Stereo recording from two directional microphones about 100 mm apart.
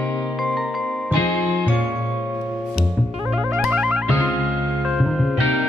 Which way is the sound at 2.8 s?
5° right (ahead or behind).